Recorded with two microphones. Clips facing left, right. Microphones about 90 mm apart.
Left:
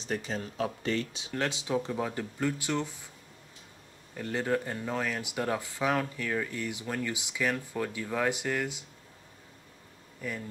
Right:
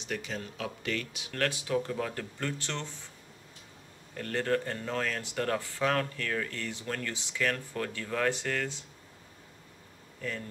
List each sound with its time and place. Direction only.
0.0 s speech: 35° left (ahead or behind)
1.3 s speech: 20° left (ahead or behind)
4.1 s speech: 10° left (ahead or behind)
10.2 s speech: 10° left (ahead or behind)